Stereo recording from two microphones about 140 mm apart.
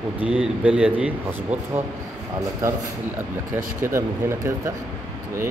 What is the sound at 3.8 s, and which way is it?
Speech, 20° right (ahead or behind).